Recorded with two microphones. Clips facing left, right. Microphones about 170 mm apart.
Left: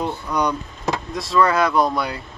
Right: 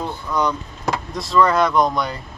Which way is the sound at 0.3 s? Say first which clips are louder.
Right 1 dB; 15° left (ahead or behind).